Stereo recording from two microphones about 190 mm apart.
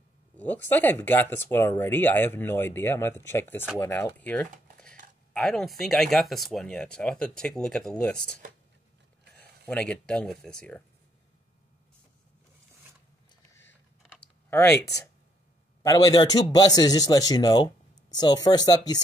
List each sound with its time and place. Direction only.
0.4 s speech: 10° left (ahead or behind)
9.7 s speech: 5° left (ahead or behind)
14.5 s speech: 10° left (ahead or behind)
15.8 s a man's voice: 15° left (ahead or behind)